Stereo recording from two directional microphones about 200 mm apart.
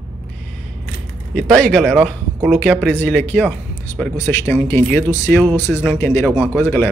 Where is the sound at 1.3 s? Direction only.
5° left (ahead or behind).